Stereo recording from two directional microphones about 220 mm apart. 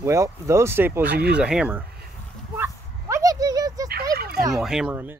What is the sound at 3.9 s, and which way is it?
Speech, 45° right (ahead or behind).